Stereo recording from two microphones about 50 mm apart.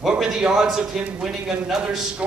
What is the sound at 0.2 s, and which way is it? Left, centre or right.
A man's voice, centre.